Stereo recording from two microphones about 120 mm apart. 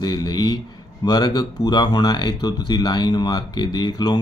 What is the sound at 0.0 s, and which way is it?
Speech, 35° left (ahead or behind).